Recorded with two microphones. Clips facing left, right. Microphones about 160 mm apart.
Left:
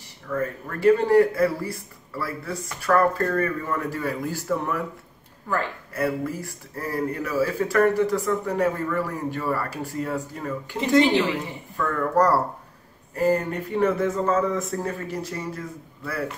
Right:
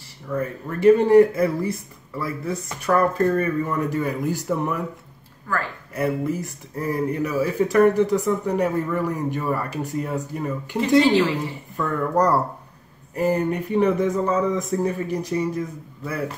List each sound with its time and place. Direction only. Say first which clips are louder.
0.3 s speech: right 1 dB; 20° right (ahead or behind)
5.5 s speech: left 1 dB; 20° left (ahead or behind)
5.9 s speech: right 2 dB; 20° right (ahead or behind)